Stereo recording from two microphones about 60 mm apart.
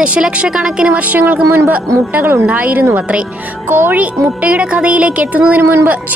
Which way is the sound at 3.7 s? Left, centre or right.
Right.